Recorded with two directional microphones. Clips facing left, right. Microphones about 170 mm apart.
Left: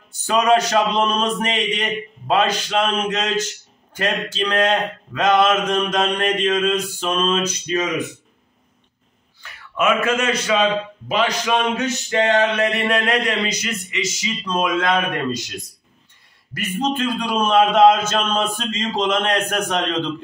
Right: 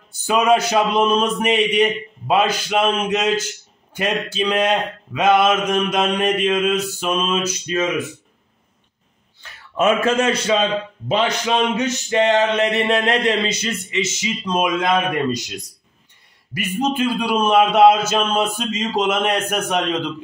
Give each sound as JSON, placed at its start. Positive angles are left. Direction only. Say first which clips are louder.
{"t": 0.3, "sound": "speech", "louder": "even", "side_deg": -5}
{"t": 9.4, "sound": "a man's voice", "louder": "right 2 dB", "side_deg": -30}
{"t": 11.1, "sound": "male singing", "louder": "right 1 dB", "side_deg": -25}
{"t": 16.5, "sound": "speech", "louder": "right 2 dB", "side_deg": -10}